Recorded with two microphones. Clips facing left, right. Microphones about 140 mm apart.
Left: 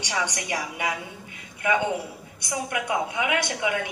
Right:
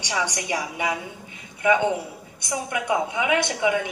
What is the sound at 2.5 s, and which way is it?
A woman's voice, 25° right (ahead or behind).